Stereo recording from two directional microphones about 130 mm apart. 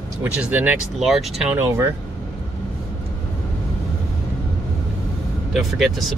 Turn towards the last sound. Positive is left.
turn(degrees=0)  # may be behind; listen again after turning